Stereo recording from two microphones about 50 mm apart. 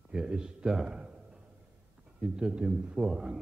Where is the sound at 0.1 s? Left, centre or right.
Centre.